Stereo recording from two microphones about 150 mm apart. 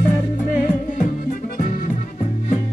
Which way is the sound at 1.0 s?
60° left (ahead or behind).